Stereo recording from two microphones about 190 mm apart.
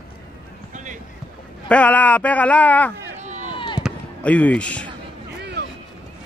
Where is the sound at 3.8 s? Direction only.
5° left (ahead or behind).